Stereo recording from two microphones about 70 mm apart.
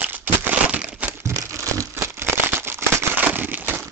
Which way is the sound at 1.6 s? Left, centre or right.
Right.